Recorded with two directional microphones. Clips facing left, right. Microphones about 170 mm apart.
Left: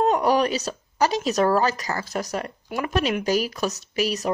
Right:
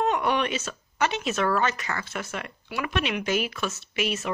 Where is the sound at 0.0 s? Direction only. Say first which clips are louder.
Left 5 dB; 35° left (ahead or behind).